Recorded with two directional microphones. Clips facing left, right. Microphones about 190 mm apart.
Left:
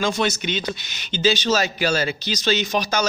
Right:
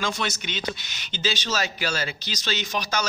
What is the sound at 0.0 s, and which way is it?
A man's voice, 20° left (ahead or behind).